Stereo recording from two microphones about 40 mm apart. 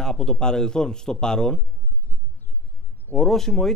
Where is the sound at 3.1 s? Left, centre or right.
Centre.